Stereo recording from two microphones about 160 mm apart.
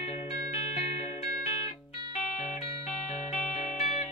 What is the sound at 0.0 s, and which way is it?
Music, 40° left (ahead or behind).